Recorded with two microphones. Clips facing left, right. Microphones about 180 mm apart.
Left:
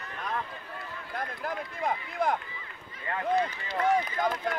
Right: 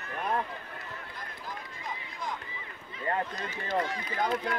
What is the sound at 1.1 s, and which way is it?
Speech, 60° left (ahead or behind).